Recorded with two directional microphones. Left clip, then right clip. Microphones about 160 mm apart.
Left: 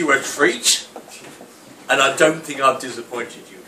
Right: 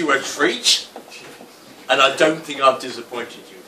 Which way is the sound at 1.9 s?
25° left (ahead or behind).